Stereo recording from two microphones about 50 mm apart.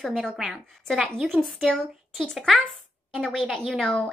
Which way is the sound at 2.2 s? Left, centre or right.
Centre.